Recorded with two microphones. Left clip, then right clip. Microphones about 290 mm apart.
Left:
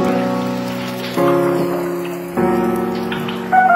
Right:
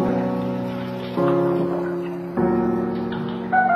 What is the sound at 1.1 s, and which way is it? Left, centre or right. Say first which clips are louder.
Music: left 5 dB; left.